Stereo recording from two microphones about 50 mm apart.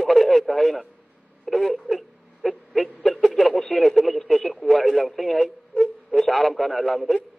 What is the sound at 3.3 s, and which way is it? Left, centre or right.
Speech, centre.